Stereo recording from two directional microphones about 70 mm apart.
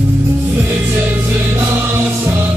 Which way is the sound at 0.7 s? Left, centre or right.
Right.